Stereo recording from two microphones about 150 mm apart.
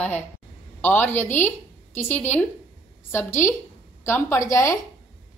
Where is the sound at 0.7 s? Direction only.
10° left (ahead or behind).